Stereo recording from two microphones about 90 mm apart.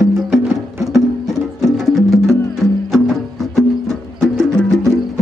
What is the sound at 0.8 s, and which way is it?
Music, centre (ahead or behind).